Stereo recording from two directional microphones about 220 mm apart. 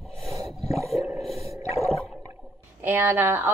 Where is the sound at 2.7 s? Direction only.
10° right (ahead or behind).